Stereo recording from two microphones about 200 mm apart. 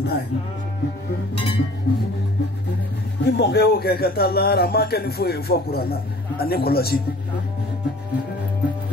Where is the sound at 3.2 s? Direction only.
55° left (ahead or behind).